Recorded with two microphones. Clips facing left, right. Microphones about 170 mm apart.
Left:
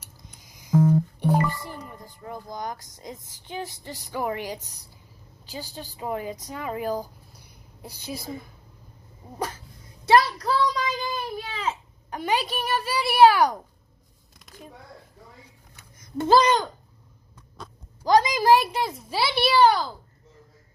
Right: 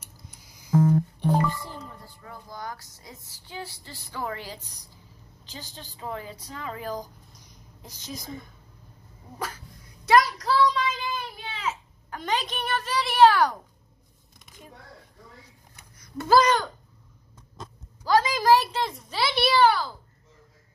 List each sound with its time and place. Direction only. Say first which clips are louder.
0.4 s music: left 2 dB; 20° left (ahead or behind)
1.3 s speech: left 1 dB; 15° left (ahead or behind)
10.0 s a sound: left 1 dB; 30° left (ahead or behind)
12.1 s speech: left 3 dB; 10° left (ahead or behind)
16.0 s speech: left 1 dB; 25° left (ahead or behind)
18.0 s speech: left 2 dB; 15° left (ahead or behind)